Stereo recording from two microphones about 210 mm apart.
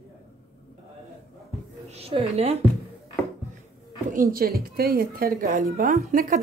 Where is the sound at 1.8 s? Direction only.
30° right (ahead or behind).